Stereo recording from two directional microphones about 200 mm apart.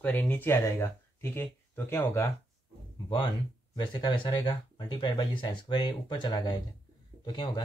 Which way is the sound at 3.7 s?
20° left (ahead or behind).